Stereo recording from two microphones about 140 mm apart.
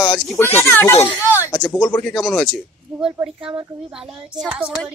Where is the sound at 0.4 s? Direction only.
15° left (ahead or behind).